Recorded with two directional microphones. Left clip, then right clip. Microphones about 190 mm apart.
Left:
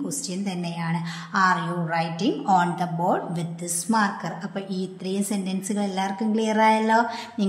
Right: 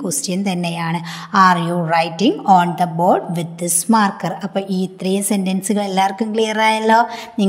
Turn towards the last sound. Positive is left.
turn(degrees=-40)  # may be behind; listen again after turning